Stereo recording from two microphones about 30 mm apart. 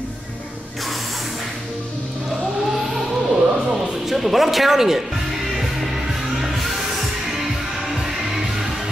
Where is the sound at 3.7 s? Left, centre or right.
Centre.